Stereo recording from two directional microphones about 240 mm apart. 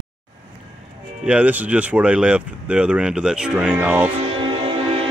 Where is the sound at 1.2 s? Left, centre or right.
Centre.